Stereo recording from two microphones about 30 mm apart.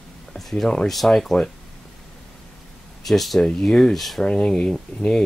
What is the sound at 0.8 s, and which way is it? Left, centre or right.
Speech, centre.